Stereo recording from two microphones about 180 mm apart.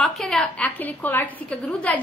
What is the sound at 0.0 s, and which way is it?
A woman's voice, 5° left (ahead or behind).